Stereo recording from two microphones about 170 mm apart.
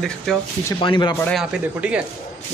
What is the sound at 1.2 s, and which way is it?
Speech, centre (ahead or behind).